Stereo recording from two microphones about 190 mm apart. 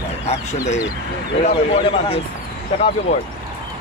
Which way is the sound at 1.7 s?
30° left (ahead or behind).